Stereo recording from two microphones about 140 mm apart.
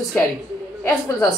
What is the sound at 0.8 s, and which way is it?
Speech, 20° left (ahead or behind).